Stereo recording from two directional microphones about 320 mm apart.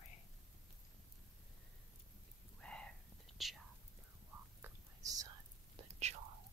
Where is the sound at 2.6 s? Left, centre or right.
Centre.